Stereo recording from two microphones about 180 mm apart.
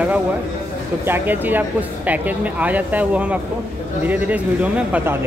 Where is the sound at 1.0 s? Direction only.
10° right (ahead or behind).